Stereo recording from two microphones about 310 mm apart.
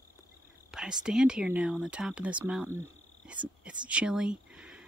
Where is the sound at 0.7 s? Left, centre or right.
Centre.